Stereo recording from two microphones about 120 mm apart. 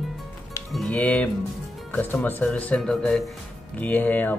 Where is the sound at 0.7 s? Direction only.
10° left (ahead or behind).